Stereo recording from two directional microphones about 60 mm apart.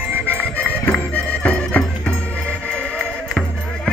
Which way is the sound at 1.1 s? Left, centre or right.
Left.